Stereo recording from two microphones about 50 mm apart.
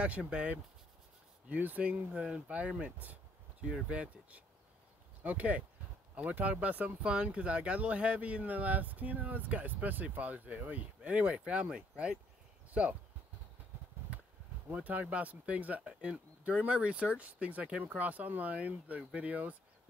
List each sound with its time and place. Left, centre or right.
0.2 s speech: right
1.5 s speech: right
3.6 s speech: right
14.7 s speech: right
15.8 s speech: centre